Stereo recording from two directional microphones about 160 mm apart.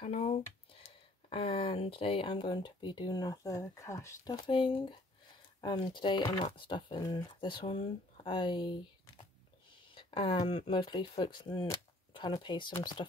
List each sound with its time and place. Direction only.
0.0 s speech: 40° left (ahead or behind); by 4.4 s 20° left (ahead or behind)
4.4 s speech: 35° left (ahead or behind)
9.9 s a sound: 40° left (ahead or behind)
10.4 s speech: 30° left (ahead or behind)